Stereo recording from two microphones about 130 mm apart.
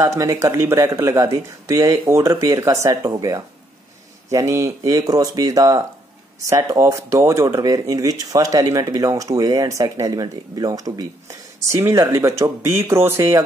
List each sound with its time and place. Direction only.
0.0 s speech: 25° right (ahead or behind)